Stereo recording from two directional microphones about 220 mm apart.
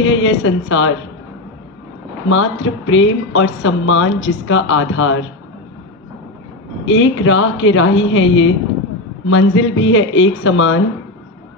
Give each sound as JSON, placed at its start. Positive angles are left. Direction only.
{"t": 0.0, "sound": "speech", "side_deg": 60}
{"t": 2.2, "sound": "speech", "side_deg": 65}
{"t": 6.9, "sound": "speech", "side_deg": 65}